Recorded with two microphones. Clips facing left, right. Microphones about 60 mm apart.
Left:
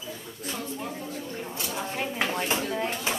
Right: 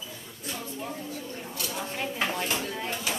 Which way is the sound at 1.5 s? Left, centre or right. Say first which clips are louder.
Left 1 dB; centre.